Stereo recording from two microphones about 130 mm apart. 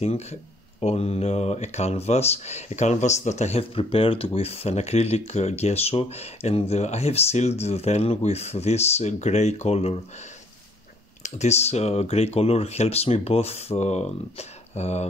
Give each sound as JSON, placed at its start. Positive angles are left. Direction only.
{"t": 0.0, "sound": "speech", "side_deg": 55}
{"t": 11.2, "sound": "speech", "side_deg": 60}